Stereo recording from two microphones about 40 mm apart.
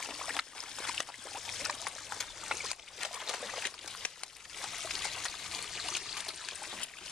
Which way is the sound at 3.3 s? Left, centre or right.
Centre.